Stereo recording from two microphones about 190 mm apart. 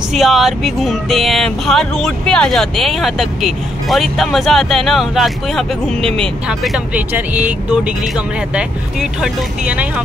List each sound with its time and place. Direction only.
0.1 s speech: centre (ahead or behind)
9.2 s speech: 5° right (ahead or behind)